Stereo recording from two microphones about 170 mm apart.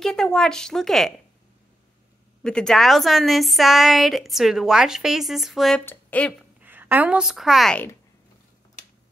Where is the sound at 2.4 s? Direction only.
5° left (ahead or behind).